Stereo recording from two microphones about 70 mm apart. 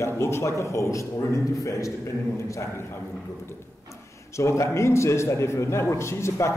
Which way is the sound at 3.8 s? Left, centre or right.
Left.